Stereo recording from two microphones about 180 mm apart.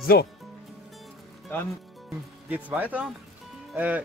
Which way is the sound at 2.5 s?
10° right (ahead or behind).